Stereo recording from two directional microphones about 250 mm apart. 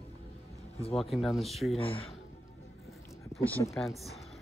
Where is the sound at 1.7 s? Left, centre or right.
Left.